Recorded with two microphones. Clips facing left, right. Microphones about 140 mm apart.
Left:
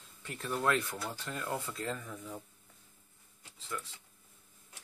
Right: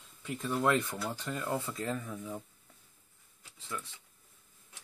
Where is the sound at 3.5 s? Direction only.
15° right (ahead or behind).